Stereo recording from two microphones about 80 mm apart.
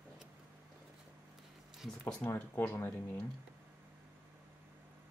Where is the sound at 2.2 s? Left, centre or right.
Left.